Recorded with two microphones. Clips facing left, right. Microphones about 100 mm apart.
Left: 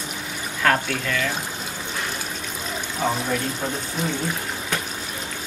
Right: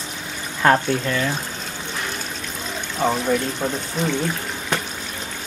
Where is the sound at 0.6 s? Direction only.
25° right (ahead or behind).